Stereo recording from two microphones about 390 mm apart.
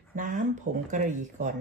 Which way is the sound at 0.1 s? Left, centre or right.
Centre.